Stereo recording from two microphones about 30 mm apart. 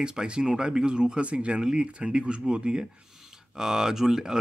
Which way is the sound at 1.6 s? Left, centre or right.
Right.